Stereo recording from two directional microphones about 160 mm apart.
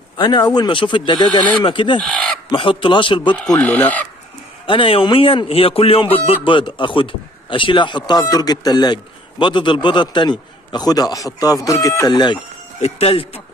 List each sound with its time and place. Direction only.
0.2 s a man's voice: 25° left (ahead or behind)
3.4 s speech: 10° left (ahead or behind)
4.6 s a man's voice: 35° left (ahead or behind)